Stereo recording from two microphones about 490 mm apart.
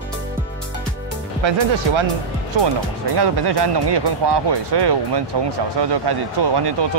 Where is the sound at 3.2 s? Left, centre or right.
Right.